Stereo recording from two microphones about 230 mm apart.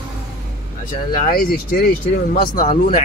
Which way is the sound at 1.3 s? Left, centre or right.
Left.